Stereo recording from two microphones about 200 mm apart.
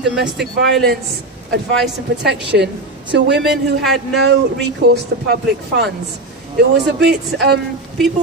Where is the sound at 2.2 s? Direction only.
55° right (ahead or behind).